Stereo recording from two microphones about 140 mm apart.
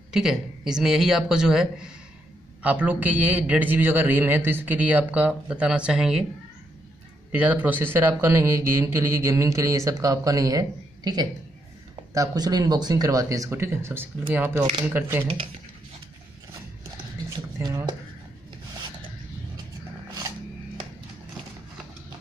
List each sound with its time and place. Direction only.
0.1 s a man's voice: 5° right (ahead or behind)
7.3 s a man's voice: 10° right (ahead or behind)
17.6 s a man's voice: 25° right (ahead or behind)